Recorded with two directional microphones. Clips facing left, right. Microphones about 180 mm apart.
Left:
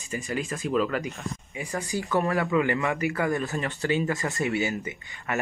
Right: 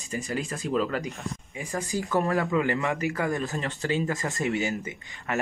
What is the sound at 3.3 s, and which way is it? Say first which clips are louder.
Speech: left 1 dB; 20° right (ahead or behind).